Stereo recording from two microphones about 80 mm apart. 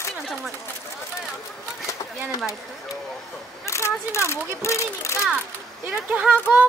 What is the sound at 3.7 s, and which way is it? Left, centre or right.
A child's voice, left.